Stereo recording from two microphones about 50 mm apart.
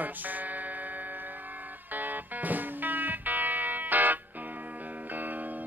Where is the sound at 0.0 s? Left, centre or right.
Right.